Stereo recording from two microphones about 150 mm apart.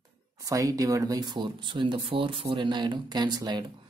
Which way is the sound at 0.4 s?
25° right (ahead or behind).